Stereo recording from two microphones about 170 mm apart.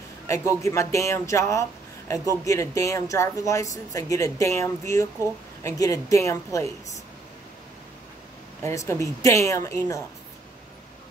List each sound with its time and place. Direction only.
0.7 s speech: 15° left (ahead or behind)
8.6 s speech: 15° left (ahead or behind)